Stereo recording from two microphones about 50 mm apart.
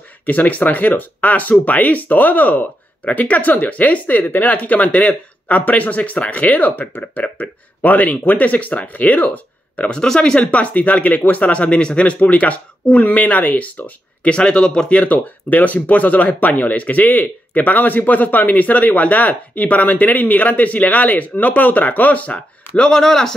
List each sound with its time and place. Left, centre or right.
0.2 s speech: left
9.8 s speech: centre
10.5 s speech: left
22.8 s speech: centre